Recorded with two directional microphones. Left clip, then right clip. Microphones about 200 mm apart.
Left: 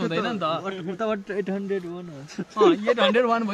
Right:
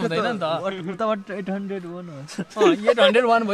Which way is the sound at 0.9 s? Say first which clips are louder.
Even; 40° right (ahead or behind).